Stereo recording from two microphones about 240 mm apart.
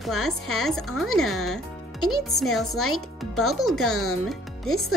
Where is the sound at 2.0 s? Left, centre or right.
Left.